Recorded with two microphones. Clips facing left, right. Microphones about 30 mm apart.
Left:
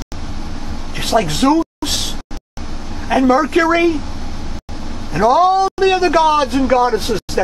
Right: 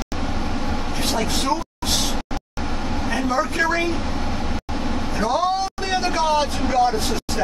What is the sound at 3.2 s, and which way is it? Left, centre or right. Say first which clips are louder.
Speech: left 9 dB; left.